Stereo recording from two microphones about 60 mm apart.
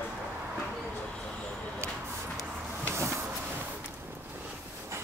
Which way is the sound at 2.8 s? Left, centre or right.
Right.